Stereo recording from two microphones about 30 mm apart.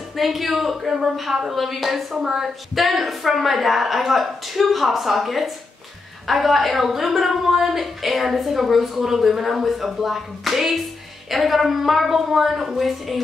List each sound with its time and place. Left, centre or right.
0.1 s a woman's voice: centre